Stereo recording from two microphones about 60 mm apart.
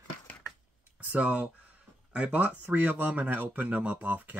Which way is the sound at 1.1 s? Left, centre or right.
Right.